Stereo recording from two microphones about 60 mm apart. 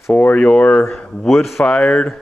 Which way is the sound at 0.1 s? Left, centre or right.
Left.